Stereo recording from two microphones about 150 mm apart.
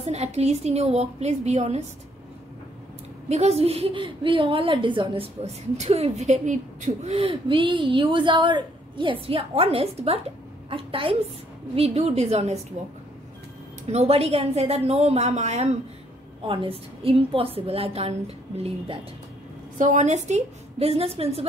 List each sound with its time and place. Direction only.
0.0 s a woman's voice: 45° right (ahead or behind)
3.3 s a woman's voice: 45° right (ahead or behind)
13.8 s a woman's voice: 45° right (ahead or behind)
16.4 s a woman's voice: 35° right (ahead or behind)
19.8 s a woman's voice: 55° right (ahead or behind)